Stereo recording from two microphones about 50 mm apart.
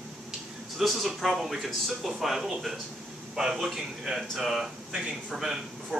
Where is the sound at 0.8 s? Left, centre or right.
Centre.